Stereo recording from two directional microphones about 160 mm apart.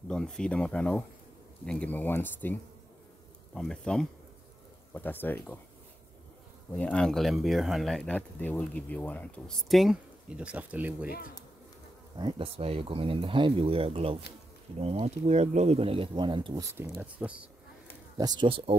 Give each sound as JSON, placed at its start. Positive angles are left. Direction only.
{"t": 0.1, "sound": "speech", "side_deg": 5}
{"t": 6.7, "sound": "speech", "side_deg": 10}
{"t": 11.1, "sound": "speech", "side_deg": 70}
{"t": 12.2, "sound": "speech", "side_deg": -30}
{"t": 16.7, "sound": "speech", "side_deg": -15}
{"t": 18.1, "sound": "speech", "side_deg": -25}